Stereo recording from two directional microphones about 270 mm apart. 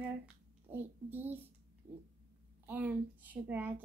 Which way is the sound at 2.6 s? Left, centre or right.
Centre.